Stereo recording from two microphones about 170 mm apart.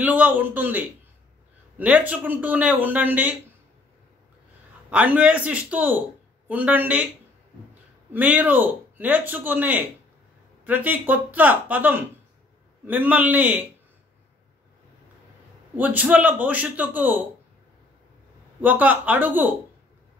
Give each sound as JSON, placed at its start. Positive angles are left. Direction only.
{"t": 0.0, "sound": "speech", "side_deg": -10}
{"t": 4.8, "sound": "speech", "side_deg": -10}
{"t": 8.1, "sound": "speech", "side_deg": -10}
{"t": 15.7, "sound": "speech", "side_deg": -10}
{"t": 18.6, "sound": "speech", "side_deg": -10}